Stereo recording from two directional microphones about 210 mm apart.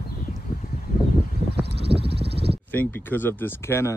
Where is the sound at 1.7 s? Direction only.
25° right (ahead or behind).